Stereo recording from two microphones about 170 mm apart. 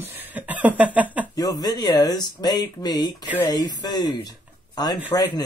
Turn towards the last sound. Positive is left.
turn(degrees=25)  # may be behind; listen again after turning